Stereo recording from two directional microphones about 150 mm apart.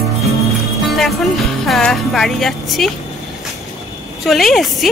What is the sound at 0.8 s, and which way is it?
Speech, centre (ahead or behind).